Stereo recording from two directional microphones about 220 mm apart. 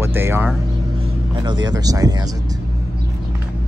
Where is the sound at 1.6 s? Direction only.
15° right (ahead or behind).